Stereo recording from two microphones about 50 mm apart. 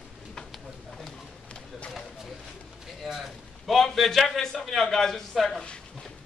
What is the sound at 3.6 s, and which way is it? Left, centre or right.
A man's voice, centre.